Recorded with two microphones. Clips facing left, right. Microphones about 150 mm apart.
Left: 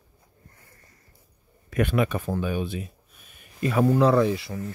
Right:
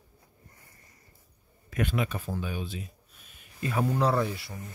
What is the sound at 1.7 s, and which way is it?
Speech, 60° left (ahead or behind).